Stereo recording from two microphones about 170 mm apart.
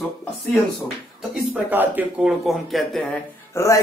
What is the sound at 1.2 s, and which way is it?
Speech, 10° right (ahead or behind).